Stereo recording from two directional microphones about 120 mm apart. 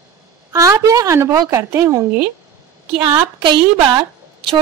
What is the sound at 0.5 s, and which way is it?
A woman's voice, 25° right (ahead or behind).